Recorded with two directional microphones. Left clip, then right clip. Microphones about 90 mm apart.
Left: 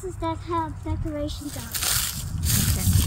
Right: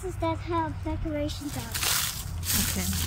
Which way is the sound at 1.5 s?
80° left.